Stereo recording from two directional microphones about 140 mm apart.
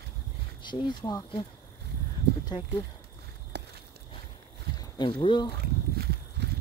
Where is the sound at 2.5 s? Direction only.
45° left (ahead or behind).